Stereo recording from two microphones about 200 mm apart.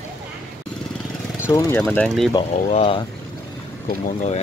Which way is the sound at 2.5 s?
30° left (ahead or behind).